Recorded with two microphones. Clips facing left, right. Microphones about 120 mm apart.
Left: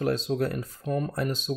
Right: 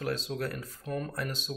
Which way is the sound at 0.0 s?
25° left (ahead or behind).